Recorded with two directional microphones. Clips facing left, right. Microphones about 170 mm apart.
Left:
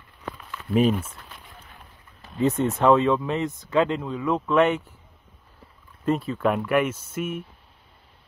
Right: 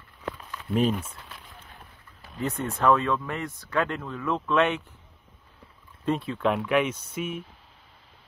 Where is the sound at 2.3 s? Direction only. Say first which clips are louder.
Left 7 dB; 20° left (ahead or behind).